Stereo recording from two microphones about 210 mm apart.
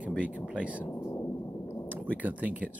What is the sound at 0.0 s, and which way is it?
Thunder, 5° right (ahead or behind).